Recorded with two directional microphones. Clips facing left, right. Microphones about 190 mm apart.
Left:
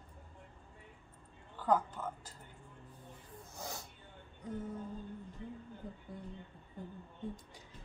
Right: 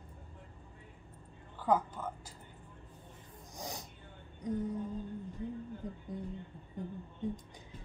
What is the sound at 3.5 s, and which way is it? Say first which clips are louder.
Snort: right 2 dB; 15° right (ahead or behind).